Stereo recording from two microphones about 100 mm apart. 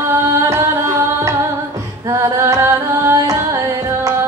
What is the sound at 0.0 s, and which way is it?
Singing, 30° right (ahead or behind).